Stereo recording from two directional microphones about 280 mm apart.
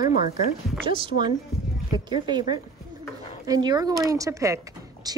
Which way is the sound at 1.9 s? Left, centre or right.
Centre.